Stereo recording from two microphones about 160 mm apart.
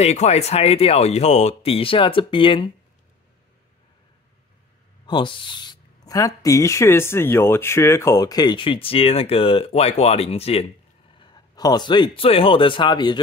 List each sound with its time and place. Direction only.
0.0 s speech: 45° left (ahead or behind)
5.0 s speech: 30° left (ahead or behind)
11.1 s speech: 25° left (ahead or behind)